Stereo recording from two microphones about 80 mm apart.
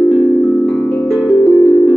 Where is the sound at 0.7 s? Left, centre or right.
Centre.